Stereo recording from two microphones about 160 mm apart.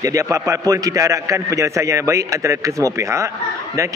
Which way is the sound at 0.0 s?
20° right (ahead or behind).